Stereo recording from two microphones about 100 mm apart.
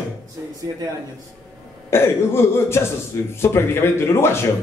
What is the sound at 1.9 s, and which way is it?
Speech, 25° left (ahead or behind).